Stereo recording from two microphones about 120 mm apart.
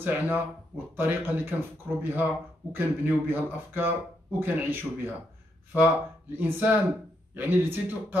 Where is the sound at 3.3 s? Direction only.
15° right (ahead or behind).